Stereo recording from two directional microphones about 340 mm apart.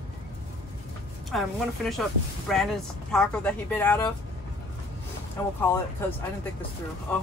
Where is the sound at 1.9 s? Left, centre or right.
Centre.